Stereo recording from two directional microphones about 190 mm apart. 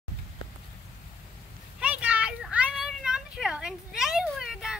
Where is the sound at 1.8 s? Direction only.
5° right (ahead or behind).